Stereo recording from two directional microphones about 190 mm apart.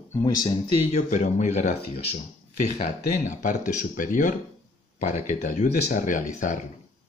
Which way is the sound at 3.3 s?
40° left (ahead or behind).